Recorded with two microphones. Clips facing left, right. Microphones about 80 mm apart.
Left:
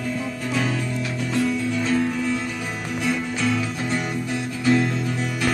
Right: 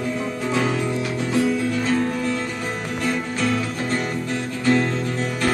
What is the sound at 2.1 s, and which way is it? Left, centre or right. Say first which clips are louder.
Music: right 1 dB; centre.